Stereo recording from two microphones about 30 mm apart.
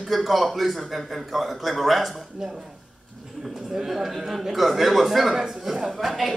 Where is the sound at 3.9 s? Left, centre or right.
Centre.